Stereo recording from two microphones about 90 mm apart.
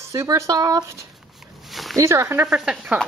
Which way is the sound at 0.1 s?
35° right (ahead or behind).